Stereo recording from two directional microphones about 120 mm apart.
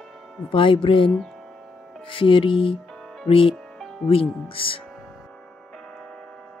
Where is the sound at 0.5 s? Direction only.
45° left (ahead or behind).